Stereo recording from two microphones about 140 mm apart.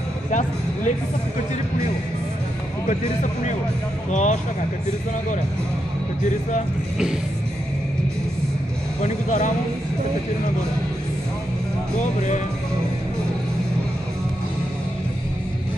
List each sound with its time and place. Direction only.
0.3 s speech: 60° left (ahead or behind)
2.9 s speech: 65° left (ahead or behind)
9.0 s speech: 60° left (ahead or behind)
12.0 s speech: 60° left (ahead or behind)